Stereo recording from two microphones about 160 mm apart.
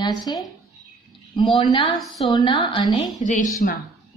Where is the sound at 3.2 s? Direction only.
50° left (ahead or behind).